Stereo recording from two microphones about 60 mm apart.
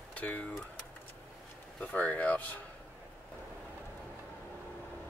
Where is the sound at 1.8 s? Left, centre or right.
Left.